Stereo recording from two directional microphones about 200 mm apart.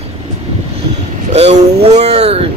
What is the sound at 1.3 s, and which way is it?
Speech, 35° right (ahead or behind).